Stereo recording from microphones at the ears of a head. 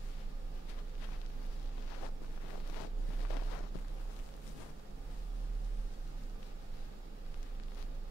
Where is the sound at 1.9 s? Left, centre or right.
Left.